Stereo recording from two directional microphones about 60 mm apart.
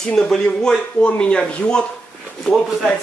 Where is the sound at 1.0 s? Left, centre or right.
Left.